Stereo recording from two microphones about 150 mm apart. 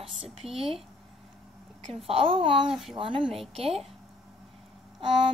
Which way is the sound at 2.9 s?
35° right (ahead or behind).